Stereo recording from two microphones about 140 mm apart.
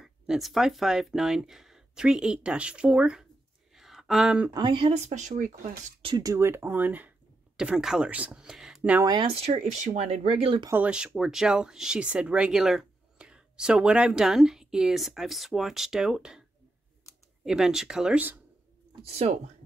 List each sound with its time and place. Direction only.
0.0 s speech: centre (ahead or behind)
3.7 s a sound: centre (ahead or behind)
4.5 s speech: 30° right (ahead or behind)
4.9 s speech: 55° right (ahead or behind)
6.0 s speech: 30° right (ahead or behind); by 9.0 s 5° right (ahead or behind)
9.0 s speech: 30° right (ahead or behind)
9.3 s speech: 45° right (ahead or behind)
10.7 s speech: 10° right (ahead or behind)
17.5 s speech: 5° right (ahead or behind)
19.0 s speech: 45° right (ahead or behind)